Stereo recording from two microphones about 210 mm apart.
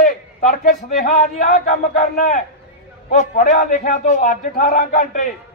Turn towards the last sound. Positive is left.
turn(degrees=40)  # may be behind; listen again after turning